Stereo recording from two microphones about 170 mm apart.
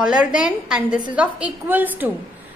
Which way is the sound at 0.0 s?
5° right (ahead or behind).